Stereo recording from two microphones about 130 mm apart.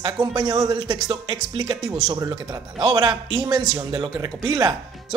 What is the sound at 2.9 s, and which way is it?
Speech, 35° right (ahead or behind).